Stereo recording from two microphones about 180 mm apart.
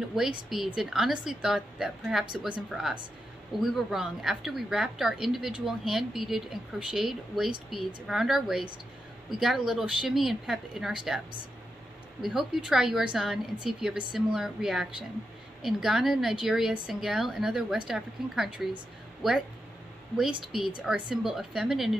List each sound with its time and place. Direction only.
0.1 s a woman's voice: 5° right (ahead or behind)
12.2 s a woman's voice: centre (ahead or behind)
20.2 s a woman's voice: centre (ahead or behind)